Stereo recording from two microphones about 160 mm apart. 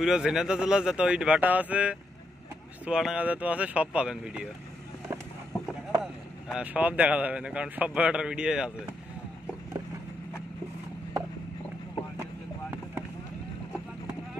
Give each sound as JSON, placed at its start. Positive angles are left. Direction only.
{"t": 0.0, "sound": "a man's voice", "side_deg": -5}
{"t": 6.5, "sound": "a man's voice", "side_deg": -10}